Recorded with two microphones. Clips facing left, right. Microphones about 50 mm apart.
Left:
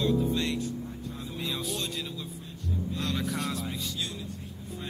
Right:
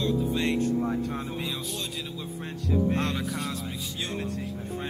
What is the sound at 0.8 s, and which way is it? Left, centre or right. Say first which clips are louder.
Music: right 11 dB; right.